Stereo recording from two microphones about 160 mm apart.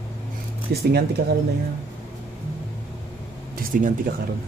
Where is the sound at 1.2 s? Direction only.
65° right (ahead or behind).